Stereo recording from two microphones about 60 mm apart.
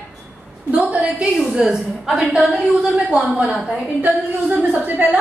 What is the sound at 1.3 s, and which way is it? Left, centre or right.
A woman's voice, centre.